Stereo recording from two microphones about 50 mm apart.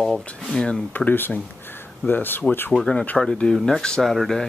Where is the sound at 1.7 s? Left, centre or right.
Left.